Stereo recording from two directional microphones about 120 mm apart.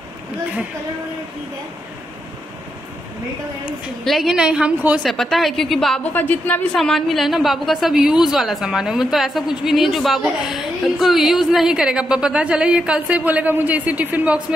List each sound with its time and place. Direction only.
4.0 s a woman's voice: centre (ahead or behind)
5.0 s a woman's voice: centre (ahead or behind)
6.1 s a woman's voice: 15° left (ahead or behind)
6.8 s a woman's voice: centre (ahead or behind)